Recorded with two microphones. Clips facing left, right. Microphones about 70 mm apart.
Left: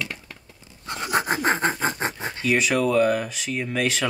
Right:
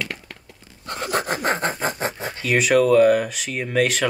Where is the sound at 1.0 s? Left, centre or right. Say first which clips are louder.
Even; centre.